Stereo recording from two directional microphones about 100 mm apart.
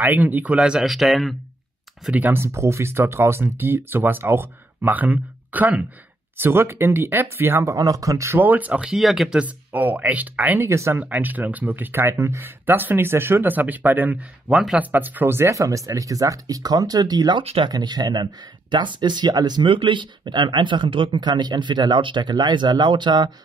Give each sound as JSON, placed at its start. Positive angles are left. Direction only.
{"t": 0.0, "sound": "speech", "side_deg": -20}
{"t": 2.0, "sound": "speech", "side_deg": -15}
{"t": 7.7, "sound": "speech", "side_deg": -35}
{"t": 8.4, "sound": "speech", "side_deg": -15}
{"t": 8.9, "sound": "speech", "side_deg": 0}
{"t": 9.4, "sound": "speech", "side_deg": -15}
{"t": 17.4, "sound": "speech", "side_deg": -65}
{"t": 17.6, "sound": "speech", "side_deg": -45}